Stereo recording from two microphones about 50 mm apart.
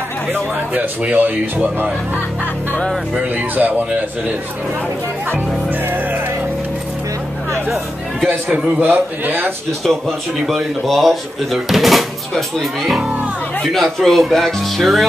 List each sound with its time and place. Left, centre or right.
0.7 s speech: right
3.5 s speech: right
8.5 s a man's voice: right
8.8 s a man's voice: right
10.4 s speech: centre